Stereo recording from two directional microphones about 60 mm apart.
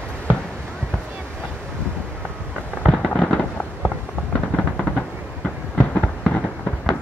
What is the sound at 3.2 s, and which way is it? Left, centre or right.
Fireworks, left.